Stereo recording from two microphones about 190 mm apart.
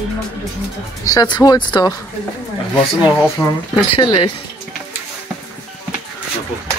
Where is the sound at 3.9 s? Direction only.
25° left (ahead or behind).